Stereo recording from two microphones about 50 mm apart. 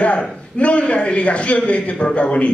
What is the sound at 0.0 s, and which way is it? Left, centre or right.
A man's voice, left.